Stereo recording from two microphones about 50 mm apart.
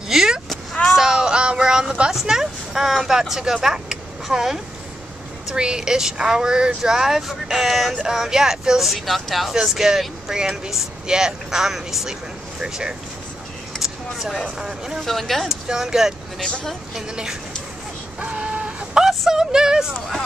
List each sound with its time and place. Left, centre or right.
0.1 s vehicle: centre
0.9 s a sound: centre
2.1 s vehicle: centre
5.5 s speech: centre
13.7 s a sound: centre
14.6 s speech: centre
15.0 s speech: centre
15.7 s speech: centre
16.3 s speech: left
17.1 s speech: centre
18.2 s a sound: right
18.9 s speech: centre